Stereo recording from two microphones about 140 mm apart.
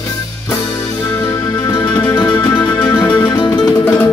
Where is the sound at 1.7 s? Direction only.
35° left (ahead or behind).